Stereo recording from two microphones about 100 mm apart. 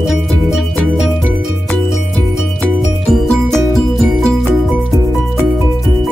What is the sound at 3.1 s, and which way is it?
Music, 5° left (ahead or behind).